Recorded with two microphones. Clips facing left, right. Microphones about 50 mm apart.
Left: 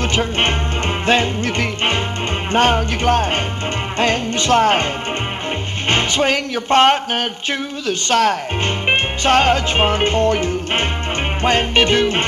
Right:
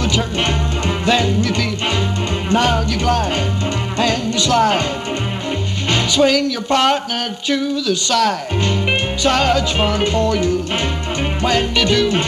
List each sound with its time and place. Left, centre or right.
0.0 s music: left
2.5 s speech: left
5.9 s speech: left